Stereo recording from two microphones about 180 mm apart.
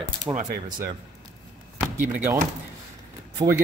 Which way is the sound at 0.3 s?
45° right (ahead or behind).